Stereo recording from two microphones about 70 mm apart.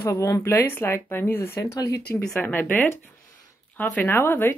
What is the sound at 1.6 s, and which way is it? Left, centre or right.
Speech, left.